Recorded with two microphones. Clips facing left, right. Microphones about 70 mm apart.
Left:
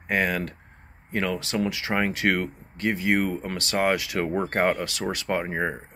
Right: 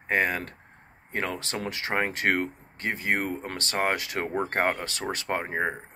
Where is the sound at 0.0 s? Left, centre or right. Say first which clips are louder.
Left 1 dB; right.